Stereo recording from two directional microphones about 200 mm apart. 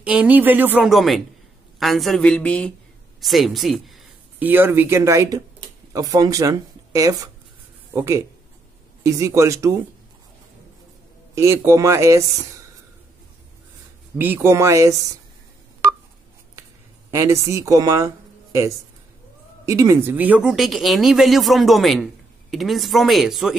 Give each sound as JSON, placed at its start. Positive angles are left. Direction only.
{"t": 0.0, "sound": "a woman's voice", "side_deg": -5}
{"t": 11.3, "sound": "a woman's voice", "side_deg": -15}
{"t": 14.1, "sound": "a woman's voice", "side_deg": -10}
{"t": 17.1, "sound": "speech", "side_deg": -15}